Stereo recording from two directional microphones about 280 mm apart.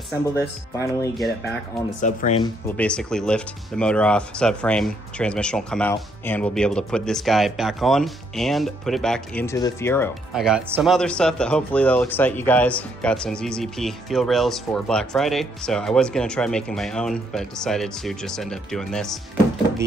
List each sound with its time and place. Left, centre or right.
0.4 s speech: centre
2.0 s speech: left
2.4 s speech: centre